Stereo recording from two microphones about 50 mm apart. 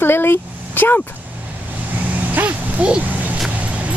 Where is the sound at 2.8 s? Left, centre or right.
Right.